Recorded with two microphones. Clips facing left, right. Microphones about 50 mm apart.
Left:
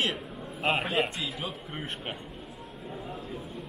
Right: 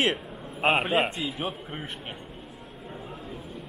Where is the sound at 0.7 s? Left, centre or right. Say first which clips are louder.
Right 3 dB; centre.